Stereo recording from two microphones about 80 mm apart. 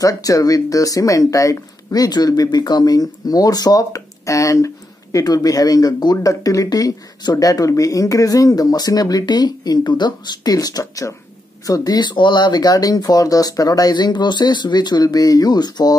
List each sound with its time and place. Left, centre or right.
0.0 s speech: left